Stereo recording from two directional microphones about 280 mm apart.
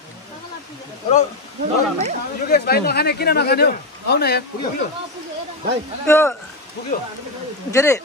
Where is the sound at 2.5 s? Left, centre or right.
Left.